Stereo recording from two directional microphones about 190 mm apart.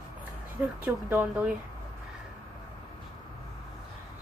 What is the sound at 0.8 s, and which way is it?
Speech, 10° right (ahead or behind).